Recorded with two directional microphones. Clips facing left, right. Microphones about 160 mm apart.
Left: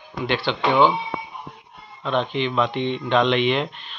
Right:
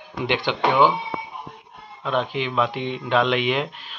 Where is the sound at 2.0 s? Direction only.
5° right (ahead or behind).